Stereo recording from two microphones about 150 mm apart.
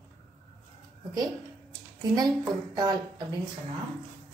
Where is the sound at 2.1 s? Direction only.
30° right (ahead or behind).